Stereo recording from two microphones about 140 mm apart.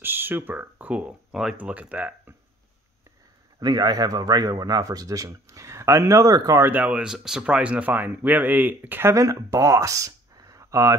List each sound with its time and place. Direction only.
0.0 s speech: 15° right (ahead or behind)
3.5 s speech: 30° right (ahead or behind)